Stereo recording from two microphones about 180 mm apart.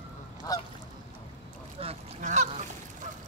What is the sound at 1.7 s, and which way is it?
Honk, 40° right (ahead or behind).